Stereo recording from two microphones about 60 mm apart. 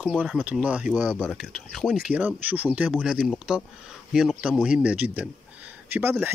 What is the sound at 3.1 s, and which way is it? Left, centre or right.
Speech, centre.